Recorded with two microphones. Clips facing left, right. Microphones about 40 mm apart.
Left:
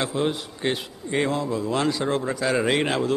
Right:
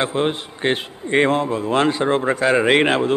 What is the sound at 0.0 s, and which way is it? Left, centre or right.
A man's voice, right.